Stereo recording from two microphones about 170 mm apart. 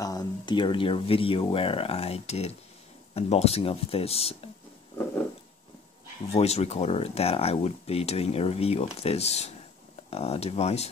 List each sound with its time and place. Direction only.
0.0 s speech: 20° left (ahead or behind)
6.3 s speech: 40° left (ahead or behind)